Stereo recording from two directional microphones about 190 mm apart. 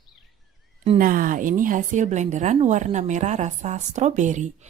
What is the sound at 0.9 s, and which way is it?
A woman's voice, 45° right (ahead or behind).